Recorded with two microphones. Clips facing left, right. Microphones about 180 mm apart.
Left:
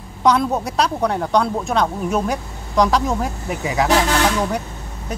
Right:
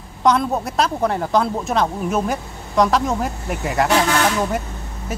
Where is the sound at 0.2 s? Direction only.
Centre (ahead or behind).